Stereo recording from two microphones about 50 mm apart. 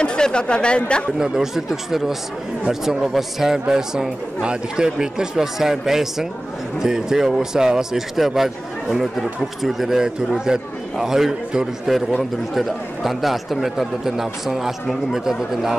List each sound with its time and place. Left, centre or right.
0.0 s speech: centre
1.2 s speech: centre
9.6 s a man's voice: centre